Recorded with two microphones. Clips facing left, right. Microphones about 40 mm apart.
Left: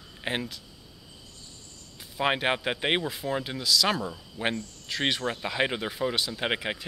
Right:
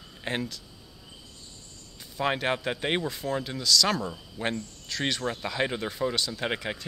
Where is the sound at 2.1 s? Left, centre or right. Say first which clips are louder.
Left 1 dB; centre.